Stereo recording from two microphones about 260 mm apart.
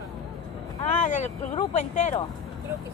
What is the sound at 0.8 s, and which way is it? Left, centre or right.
Speech, left.